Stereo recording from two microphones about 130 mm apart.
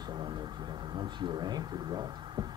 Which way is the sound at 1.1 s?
35° right (ahead or behind).